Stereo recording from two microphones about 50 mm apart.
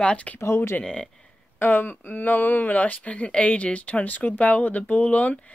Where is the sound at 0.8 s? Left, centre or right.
Centre.